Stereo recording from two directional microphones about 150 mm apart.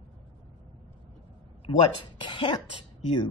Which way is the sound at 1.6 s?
35° left (ahead or behind).